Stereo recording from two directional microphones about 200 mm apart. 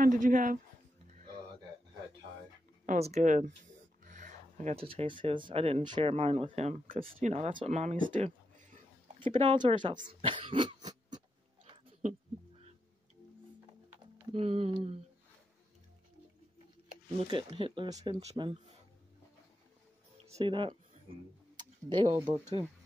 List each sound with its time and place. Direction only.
0.0 s speech: 40° right (ahead or behind)
1.1 s music: 35° right (ahead or behind)
2.9 s speech: 35° right (ahead or behind)
9.4 s speech: 25° right (ahead or behind)
10.0 s cough: 25° right (ahead or behind)
14.3 s speech: 30° right (ahead or behind)
17.2 s speech: 25° right (ahead or behind)
20.2 s speech: 30° right (ahead or behind)